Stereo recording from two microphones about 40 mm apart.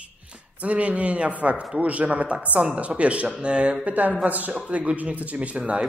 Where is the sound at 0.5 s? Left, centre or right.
Right.